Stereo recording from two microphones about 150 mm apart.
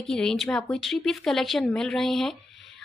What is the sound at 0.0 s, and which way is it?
Speech, 5° left (ahead or behind).